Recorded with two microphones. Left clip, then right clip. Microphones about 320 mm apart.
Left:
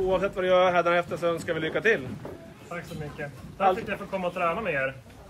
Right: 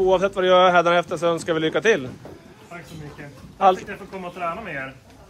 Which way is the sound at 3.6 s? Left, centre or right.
Centre.